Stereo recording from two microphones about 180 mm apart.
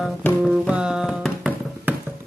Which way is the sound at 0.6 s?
5° right (ahead or behind).